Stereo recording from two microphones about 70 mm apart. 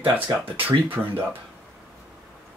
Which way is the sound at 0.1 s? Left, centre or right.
Right.